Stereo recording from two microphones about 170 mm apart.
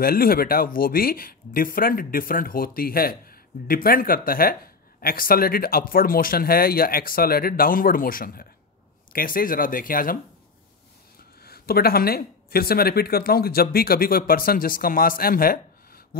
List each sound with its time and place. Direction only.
0.0 s speech: 60° left (ahead or behind)
11.4 s speech: 65° left (ahead or behind)